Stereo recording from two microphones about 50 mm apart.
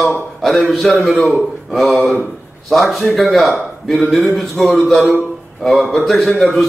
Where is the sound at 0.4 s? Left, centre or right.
Centre.